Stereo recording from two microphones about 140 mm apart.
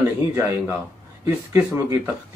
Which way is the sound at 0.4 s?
20° right (ahead or behind).